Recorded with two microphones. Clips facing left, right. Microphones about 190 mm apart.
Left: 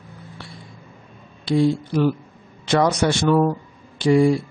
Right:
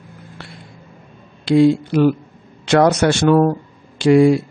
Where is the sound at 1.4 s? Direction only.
85° right.